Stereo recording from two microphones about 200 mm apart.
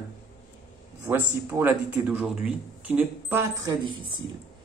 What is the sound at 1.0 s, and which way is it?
Speech, 10° right (ahead or behind).